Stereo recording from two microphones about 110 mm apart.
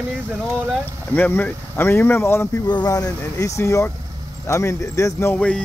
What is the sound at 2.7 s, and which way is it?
Speech, 35° left (ahead or behind).